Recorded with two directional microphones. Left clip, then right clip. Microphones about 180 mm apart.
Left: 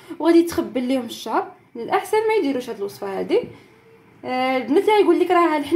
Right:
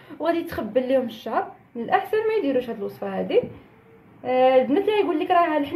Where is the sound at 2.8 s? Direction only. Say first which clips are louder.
Left 3 dB; 55° left (ahead or behind).